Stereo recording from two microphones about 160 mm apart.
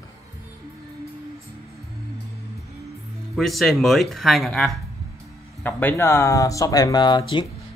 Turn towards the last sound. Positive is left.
turn(degrees=30)  # may be behind; listen again after turning